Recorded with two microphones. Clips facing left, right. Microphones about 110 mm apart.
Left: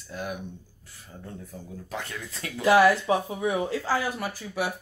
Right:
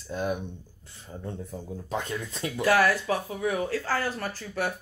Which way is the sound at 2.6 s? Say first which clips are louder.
Left 4 dB; 20° left (ahead or behind).